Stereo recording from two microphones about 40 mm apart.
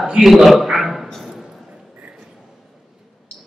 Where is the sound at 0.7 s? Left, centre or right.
Centre.